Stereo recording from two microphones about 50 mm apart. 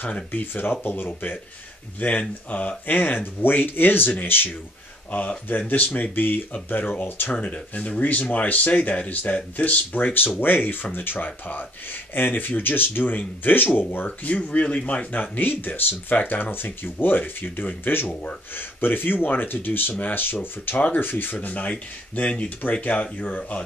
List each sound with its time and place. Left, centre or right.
0.3 s speech: left
10.4 s speech: left
13.9 s speech: left
21.5 s speech: left